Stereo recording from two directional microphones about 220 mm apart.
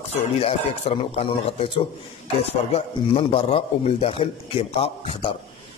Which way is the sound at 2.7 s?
25° left (ahead or behind).